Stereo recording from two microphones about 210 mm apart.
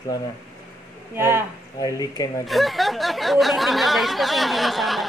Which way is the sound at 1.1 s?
10° right (ahead or behind).